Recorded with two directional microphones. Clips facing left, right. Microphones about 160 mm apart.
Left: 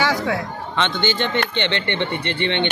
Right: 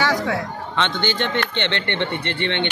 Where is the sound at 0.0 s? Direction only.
5° left (ahead or behind).